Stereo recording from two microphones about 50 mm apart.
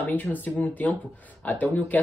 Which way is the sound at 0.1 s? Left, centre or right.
Left.